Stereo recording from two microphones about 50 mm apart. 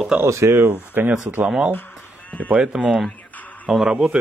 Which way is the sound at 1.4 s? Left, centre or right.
Centre.